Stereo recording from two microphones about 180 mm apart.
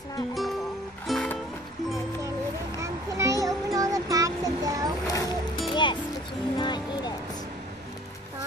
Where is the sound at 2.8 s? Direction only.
15° right (ahead or behind).